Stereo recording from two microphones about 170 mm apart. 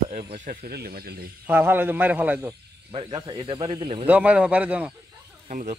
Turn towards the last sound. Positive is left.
turn(degrees=-50)  # may be behind; listen again after turning